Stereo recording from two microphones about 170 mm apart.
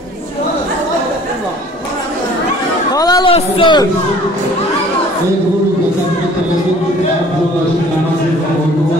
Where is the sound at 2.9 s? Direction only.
20° left (ahead or behind).